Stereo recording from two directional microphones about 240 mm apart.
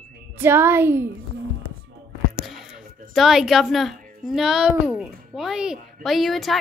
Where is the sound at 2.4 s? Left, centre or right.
Centre.